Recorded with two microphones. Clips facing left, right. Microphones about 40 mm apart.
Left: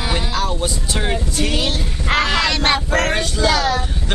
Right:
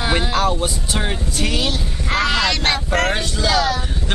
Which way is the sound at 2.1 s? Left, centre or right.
Left.